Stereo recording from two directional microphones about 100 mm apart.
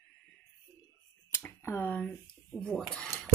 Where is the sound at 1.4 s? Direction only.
20° left (ahead or behind).